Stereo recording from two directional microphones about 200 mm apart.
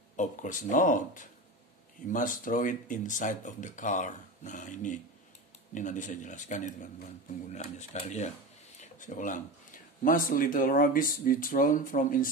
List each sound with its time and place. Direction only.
0.1 s speech: 40° left (ahead or behind)